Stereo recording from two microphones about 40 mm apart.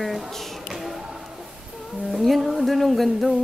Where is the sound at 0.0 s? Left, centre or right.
Centre.